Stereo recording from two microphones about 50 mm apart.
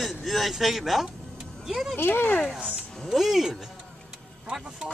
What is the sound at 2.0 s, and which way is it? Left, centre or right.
Speech, left.